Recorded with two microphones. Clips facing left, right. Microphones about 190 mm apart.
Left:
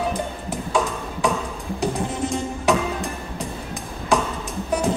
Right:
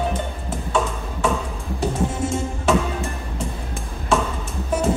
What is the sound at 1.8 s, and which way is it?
Music, 5° right (ahead or behind).